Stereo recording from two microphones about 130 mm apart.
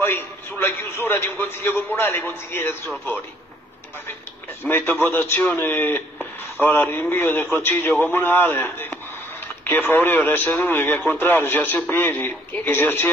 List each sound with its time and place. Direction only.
0.0 s a man's voice: 20° left (ahead or behind)
4.6 s a man's voice: 15° left (ahead or behind)